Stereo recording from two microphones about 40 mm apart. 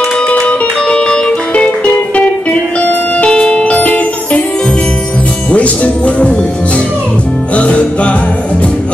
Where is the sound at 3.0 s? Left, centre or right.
Left.